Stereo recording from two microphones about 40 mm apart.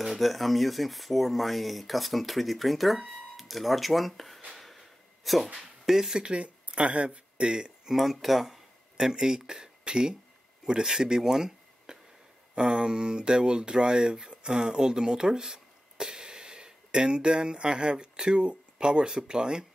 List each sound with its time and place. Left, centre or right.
0.0 s speech: centre
4.6 s a sound: centre
5.6 s speech: centre
6.2 s speech: right
7.9 s speech: centre; by 19.6 s right